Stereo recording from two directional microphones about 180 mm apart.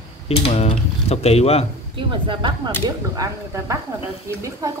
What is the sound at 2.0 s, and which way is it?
Speech, 25° right (ahead or behind).